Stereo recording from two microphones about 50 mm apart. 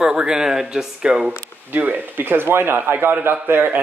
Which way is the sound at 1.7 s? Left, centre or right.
Right.